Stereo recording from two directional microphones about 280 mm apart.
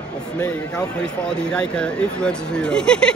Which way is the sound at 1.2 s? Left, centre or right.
Centre.